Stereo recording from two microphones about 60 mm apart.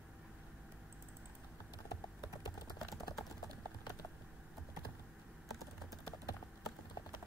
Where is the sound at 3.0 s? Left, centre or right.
Left.